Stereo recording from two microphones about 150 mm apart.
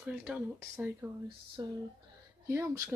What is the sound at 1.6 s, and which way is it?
Speech, 25° right (ahead or behind).